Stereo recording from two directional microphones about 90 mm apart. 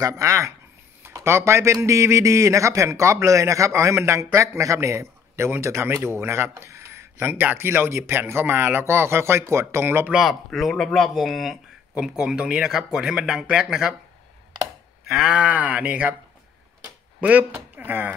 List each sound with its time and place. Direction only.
0.2 s a man's voice: 35° right (ahead or behind)
10.1 s speech: centre (ahead or behind)
15.0 s speech: 10° right (ahead or behind)
17.2 s speech: 15° right (ahead or behind)